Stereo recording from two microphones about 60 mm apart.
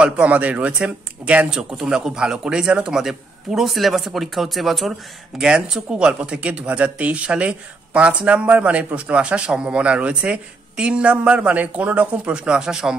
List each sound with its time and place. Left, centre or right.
0.0 s speech: right
1.5 s speech: centre
5.4 s speech: centre